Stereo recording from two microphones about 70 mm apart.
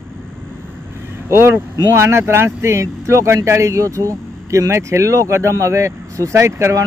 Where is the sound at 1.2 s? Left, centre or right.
Right.